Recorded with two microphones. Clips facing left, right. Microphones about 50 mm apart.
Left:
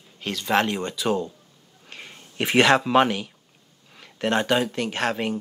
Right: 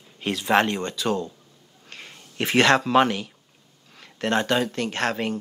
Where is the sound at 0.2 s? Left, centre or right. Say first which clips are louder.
Right 2 dB; centre.